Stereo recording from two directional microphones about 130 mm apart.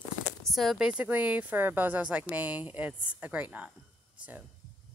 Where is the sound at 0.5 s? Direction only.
Centre (ahead or behind).